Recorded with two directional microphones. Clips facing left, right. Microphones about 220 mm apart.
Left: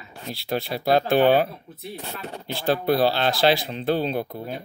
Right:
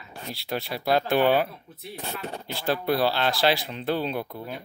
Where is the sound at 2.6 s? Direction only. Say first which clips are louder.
Left 4 dB; 25° left (ahead or behind).